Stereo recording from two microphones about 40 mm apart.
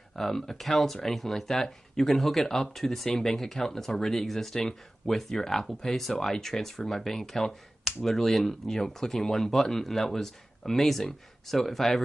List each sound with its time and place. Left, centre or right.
0.1 s speech: centre